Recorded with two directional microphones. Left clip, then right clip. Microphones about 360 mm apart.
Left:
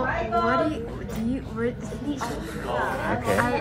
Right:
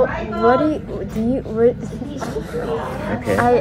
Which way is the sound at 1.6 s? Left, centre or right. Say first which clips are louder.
Right 13 dB; centre.